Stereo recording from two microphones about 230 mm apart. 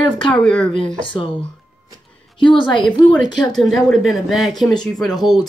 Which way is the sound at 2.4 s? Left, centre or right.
Left.